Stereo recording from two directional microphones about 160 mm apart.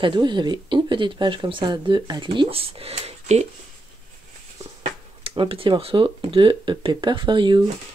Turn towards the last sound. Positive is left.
turn(degrees=-30)  # may be behind; listen again after turning